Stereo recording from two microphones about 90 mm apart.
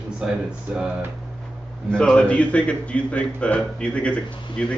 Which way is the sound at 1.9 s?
10° left (ahead or behind).